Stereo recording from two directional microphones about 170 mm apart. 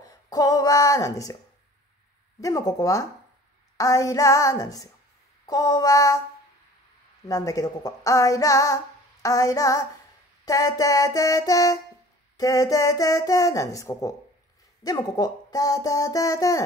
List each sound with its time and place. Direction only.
0.0 s speech: 20° left (ahead or behind)
2.4 s speech: 20° left (ahead or behind)
7.2 s speech: 20° left (ahead or behind)